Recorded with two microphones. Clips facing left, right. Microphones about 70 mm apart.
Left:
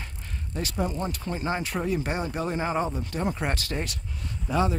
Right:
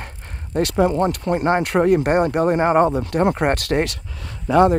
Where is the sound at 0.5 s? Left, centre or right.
Right.